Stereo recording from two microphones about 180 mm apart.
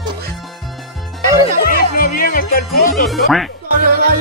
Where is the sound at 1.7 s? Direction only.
50° left (ahead or behind).